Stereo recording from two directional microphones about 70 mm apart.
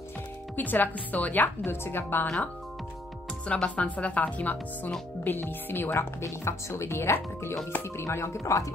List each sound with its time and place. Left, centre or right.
0.6 s speech: left
2.2 s speech: centre; by 8.7 s left